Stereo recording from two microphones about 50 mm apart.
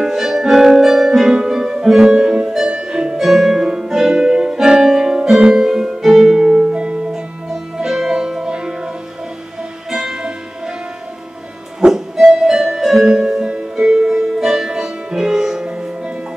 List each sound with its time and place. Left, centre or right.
0.0 s music: centre
11.8 s music: centre